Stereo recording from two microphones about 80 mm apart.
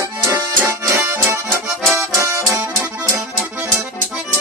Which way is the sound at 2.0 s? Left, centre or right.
Right.